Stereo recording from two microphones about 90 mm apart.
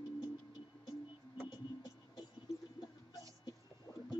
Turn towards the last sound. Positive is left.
turn(degrees=30)  # may be behind; listen again after turning